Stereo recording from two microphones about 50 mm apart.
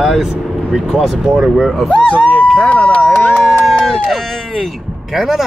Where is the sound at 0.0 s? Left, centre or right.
Centre.